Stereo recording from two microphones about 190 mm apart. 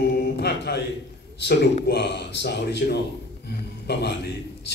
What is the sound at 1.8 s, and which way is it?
Speech, 60° left (ahead or behind).